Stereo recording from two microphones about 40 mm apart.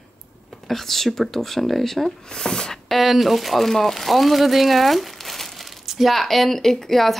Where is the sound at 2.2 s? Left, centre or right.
Centre.